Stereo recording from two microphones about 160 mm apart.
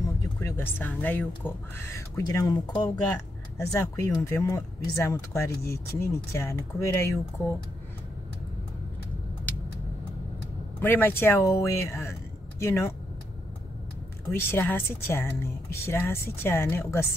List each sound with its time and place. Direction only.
0.4 s speech: 15° left (ahead or behind)
10.8 s speech: 15° left (ahead or behind)
14.3 s speech: 15° left (ahead or behind)